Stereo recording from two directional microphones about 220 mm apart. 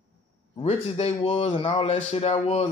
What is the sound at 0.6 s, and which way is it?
A man's voice, 30° left (ahead or behind).